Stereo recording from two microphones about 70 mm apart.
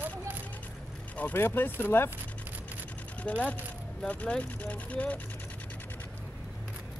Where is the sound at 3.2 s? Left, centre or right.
Centre.